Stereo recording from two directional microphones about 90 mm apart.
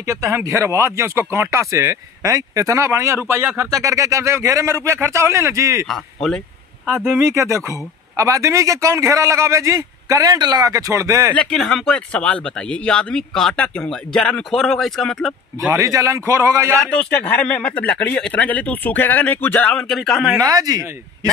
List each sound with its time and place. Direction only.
0.0 s speech: 35° right (ahead or behind)
7.1 s speech: 30° right (ahead or behind)
11.5 s speech: 5° left (ahead or behind)
15.7 s speech: 35° right (ahead or behind)
16.9 s speech: 10° left (ahead or behind)
20.3 s speech: 45° right (ahead or behind)